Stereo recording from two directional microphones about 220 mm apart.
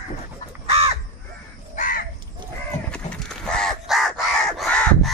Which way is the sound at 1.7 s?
35° left (ahead or behind).